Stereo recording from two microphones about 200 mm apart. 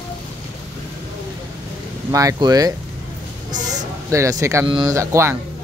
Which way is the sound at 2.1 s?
15° right (ahead or behind).